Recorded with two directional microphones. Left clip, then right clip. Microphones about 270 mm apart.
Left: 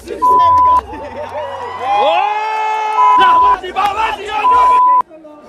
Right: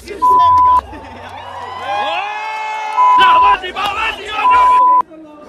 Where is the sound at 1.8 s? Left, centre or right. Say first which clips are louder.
Left 6 dB; centre.